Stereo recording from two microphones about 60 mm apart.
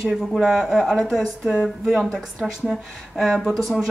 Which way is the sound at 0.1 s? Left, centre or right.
Centre.